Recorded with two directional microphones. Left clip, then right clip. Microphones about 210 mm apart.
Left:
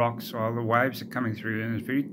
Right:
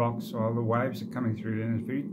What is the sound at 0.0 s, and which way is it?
Speech, 5° left (ahead or behind).